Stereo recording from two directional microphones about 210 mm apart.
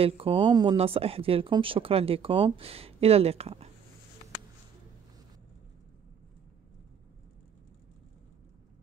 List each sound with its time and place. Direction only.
0.0 s speech: 25° right (ahead or behind)